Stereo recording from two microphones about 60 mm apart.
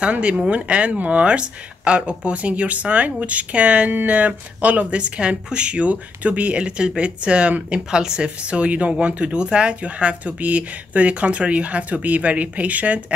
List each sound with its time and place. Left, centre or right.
0.0 s speech: centre